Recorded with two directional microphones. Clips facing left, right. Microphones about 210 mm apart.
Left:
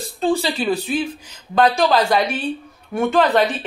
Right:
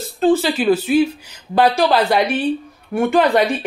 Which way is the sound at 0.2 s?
5° right (ahead or behind).